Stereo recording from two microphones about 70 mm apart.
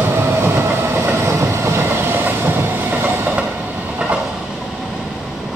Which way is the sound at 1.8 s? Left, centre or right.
Right.